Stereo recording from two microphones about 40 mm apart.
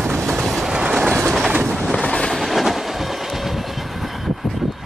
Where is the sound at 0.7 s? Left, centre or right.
Centre.